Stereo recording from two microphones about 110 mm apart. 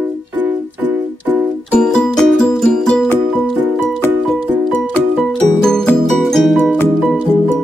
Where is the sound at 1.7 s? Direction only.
5° left (ahead or behind).